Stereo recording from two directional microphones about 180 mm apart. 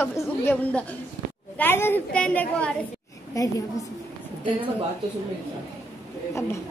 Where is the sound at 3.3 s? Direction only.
20° left (ahead or behind).